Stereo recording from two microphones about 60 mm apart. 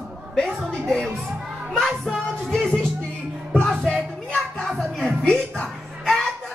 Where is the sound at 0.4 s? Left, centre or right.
Centre.